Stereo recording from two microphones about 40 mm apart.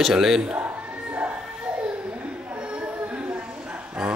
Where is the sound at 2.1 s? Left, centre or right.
Right.